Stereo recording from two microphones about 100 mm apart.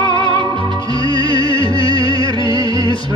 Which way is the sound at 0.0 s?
45° right (ahead or behind).